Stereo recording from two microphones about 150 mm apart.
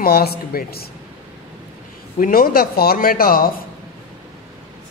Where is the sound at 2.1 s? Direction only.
75° left (ahead or behind).